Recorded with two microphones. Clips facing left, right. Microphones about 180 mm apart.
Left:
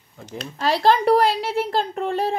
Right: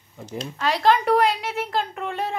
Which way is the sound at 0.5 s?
30° left (ahead or behind).